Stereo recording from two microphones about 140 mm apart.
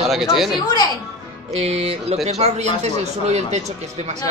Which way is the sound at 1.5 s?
45° right (ahead or behind).